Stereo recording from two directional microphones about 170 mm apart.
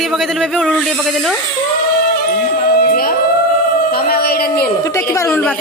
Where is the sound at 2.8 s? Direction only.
60° left (ahead or behind).